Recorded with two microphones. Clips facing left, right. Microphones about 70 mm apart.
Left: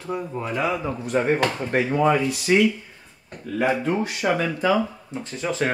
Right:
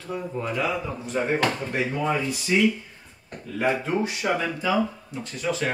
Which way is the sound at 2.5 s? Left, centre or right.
Left.